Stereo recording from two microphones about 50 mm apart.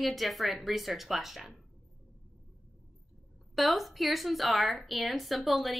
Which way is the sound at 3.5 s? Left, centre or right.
Centre.